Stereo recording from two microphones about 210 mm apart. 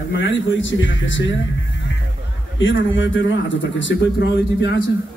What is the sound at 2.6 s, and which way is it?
A man's voice, 60° left (ahead or behind).